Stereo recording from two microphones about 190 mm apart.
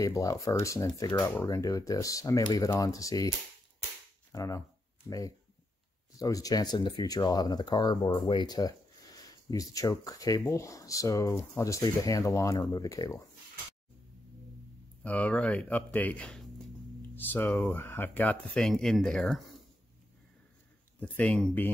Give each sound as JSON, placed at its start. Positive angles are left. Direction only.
{"t": 0.0, "sound": "speech", "side_deg": 15}
{"t": 4.3, "sound": "speech", "side_deg": 15}
{"t": 6.1, "sound": "speech", "side_deg": 20}
{"t": 15.0, "sound": "speech", "side_deg": 5}
{"t": 21.0, "sound": "speech", "side_deg": 5}